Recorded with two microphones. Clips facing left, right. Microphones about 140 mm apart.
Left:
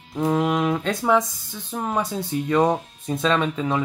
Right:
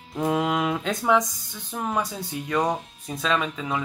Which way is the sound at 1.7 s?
20° left (ahead or behind).